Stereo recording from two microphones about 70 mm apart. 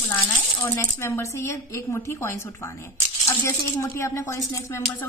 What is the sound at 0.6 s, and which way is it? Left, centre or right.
Speech, left.